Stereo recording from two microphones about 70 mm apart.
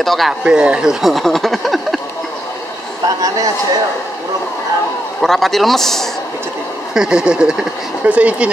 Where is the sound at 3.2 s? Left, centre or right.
Right.